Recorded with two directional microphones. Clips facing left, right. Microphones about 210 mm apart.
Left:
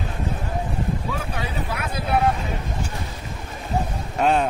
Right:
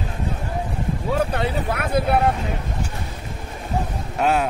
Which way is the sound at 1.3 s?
60° right (ahead or behind).